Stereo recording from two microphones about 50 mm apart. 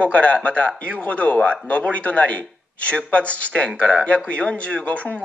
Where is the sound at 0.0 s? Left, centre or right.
Left.